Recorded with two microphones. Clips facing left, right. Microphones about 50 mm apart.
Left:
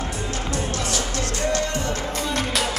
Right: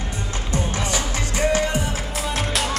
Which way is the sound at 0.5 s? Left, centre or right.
Centre.